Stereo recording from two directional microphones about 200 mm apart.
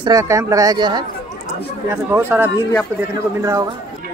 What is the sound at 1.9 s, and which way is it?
Speech, 10° right (ahead or behind).